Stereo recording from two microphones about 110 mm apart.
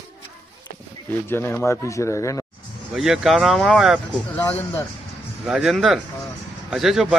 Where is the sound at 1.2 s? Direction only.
20° left (ahead or behind).